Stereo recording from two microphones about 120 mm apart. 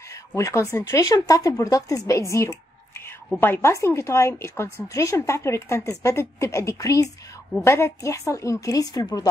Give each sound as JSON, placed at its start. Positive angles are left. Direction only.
{"t": 0.1, "sound": "a woman's voice", "side_deg": 25}